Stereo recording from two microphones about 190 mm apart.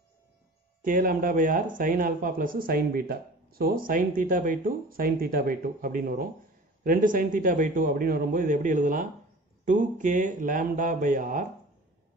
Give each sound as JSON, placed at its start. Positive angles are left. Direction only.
{"t": 0.8, "sound": "speech", "side_deg": -45}